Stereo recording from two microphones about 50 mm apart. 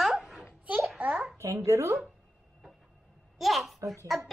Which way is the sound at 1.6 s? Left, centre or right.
Right.